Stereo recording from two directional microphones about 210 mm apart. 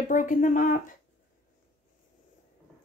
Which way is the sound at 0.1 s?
40° left (ahead or behind).